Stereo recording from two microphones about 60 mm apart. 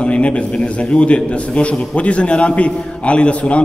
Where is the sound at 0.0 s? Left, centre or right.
Centre.